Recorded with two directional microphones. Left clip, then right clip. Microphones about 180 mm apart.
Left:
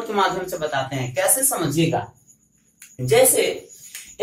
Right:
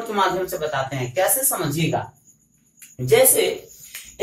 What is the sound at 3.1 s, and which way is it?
Speech, 25° left (ahead or behind).